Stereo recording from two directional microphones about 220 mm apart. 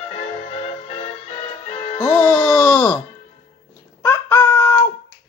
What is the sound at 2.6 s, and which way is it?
Music, 5° left (ahead or behind).